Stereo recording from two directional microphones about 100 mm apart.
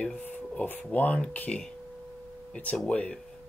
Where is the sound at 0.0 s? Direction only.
10° left (ahead or behind).